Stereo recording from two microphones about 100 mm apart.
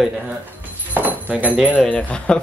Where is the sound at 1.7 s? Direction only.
10° left (ahead or behind).